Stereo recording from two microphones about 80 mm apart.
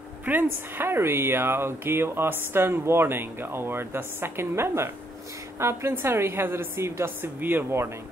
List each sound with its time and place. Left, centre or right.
0.2 s a woman's voice: right